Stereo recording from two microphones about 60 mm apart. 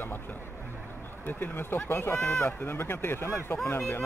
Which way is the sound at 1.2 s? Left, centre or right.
Left.